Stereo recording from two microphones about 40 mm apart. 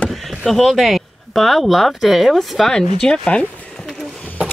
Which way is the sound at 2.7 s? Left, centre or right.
Centre.